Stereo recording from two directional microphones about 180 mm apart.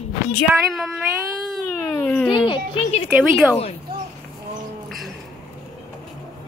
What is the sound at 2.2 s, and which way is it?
Speech, 25° left (ahead or behind).